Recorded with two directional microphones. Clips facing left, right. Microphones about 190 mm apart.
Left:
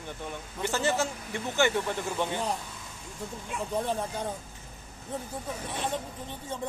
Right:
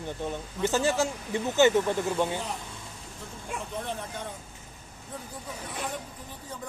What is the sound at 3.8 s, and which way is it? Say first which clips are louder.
Speech: left 4 dB; 35° left (ahead or behind).